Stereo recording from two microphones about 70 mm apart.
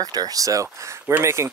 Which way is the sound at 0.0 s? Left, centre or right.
Right.